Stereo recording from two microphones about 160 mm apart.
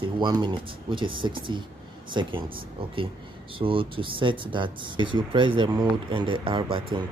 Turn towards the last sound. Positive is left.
turn(degrees=-30)  # may be behind; listen again after turning